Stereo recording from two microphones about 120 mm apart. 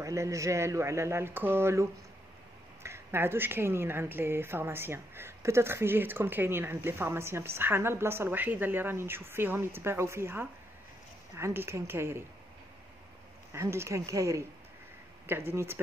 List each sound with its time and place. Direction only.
0.0 s speech: 25° right (ahead or behind)
13.5 s speech: 25° right (ahead or behind)